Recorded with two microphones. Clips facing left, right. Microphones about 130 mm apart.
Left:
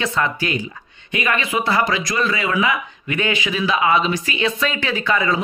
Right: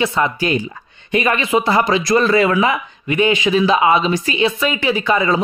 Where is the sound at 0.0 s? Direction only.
20° right (ahead or behind); by 2.7 s 40° right (ahead or behind).